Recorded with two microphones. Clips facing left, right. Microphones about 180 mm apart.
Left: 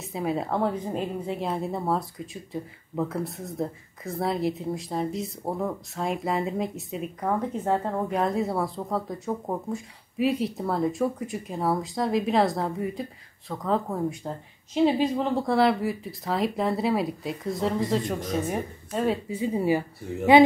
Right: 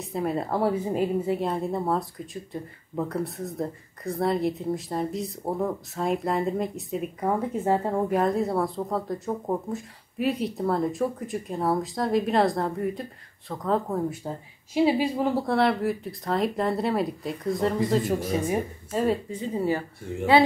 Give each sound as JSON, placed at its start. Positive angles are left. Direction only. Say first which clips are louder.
{"t": 0.1, "sound": "speech", "louder": "even", "side_deg": 0}
{"t": 19.2, "sound": "speech", "louder": "left 2 dB", "side_deg": 10}